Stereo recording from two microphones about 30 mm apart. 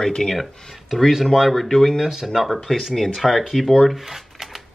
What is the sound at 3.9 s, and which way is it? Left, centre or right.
Shuffling cards, centre.